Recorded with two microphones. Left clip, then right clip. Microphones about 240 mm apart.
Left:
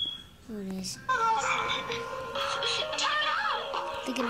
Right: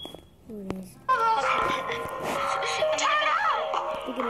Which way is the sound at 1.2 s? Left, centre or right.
Right.